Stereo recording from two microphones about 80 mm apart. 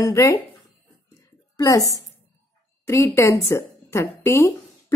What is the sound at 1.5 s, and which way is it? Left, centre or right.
A woman's voice, left.